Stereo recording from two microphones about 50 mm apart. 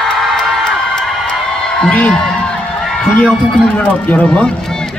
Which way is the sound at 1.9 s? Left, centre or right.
Left.